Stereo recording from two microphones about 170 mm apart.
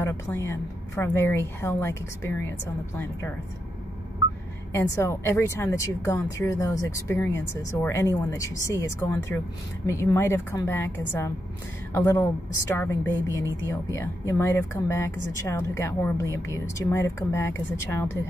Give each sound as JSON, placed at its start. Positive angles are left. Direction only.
{"t": 0.0, "sound": "a woman's voice", "side_deg": 15}
{"t": 4.7, "sound": "a woman's voice", "side_deg": 15}
{"t": 13.9, "sound": "a woman's voice", "side_deg": 15}